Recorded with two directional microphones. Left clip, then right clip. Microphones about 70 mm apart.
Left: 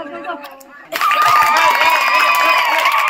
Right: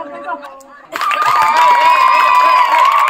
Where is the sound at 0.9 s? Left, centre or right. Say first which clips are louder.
Left 1 dB; centre.